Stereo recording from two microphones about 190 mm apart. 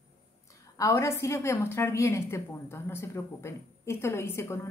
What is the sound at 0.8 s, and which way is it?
A woman's voice, 15° left (ahead or behind).